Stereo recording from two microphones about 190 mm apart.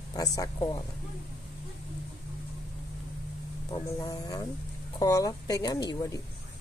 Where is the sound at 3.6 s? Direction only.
20° left (ahead or behind).